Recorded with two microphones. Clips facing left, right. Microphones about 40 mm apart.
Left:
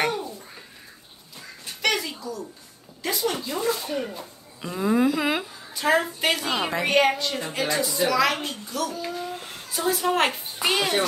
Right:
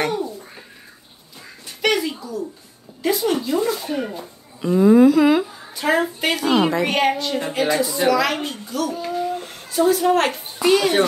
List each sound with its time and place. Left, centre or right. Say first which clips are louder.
0.0 s a sound: right 3 dB; centre
1.8 s a sound: right 5 dB; centre
3.0 s a woman's voice: right 7 dB; centre
4.6 s a woman's voice: right 10 dB; centre
9.0 s babbling: right 7 dB; centre
10.6 s speech: right 7 dB; centre